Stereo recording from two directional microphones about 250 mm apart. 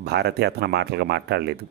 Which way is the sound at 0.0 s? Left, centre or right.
Right.